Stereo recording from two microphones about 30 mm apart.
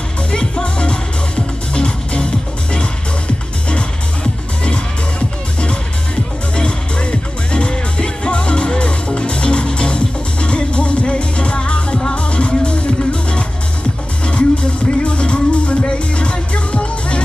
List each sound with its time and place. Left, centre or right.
0.3 s music: left
3.7 s music: left
6.5 s music: left